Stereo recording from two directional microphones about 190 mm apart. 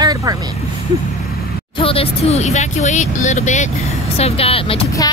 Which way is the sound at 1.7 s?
30° left (ahead or behind).